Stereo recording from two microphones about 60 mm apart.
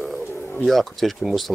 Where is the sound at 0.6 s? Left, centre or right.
Centre.